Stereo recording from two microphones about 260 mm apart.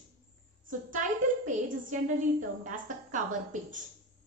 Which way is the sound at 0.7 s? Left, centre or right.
Right.